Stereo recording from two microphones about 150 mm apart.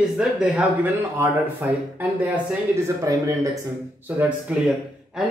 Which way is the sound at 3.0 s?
20° right (ahead or behind).